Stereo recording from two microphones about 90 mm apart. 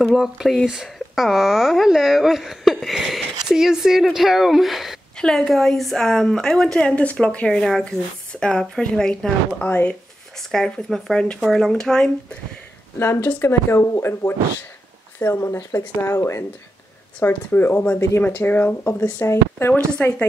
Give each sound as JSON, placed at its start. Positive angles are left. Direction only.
{"t": 0.0, "sound": "speech", "side_deg": -5}
{"t": 5.1, "sound": "speech", "side_deg": 10}
{"t": 9.7, "sound": "speech", "side_deg": 20}
{"t": 10.5, "sound": "speech", "side_deg": 5}
{"t": 13.0, "sound": "speech", "side_deg": 30}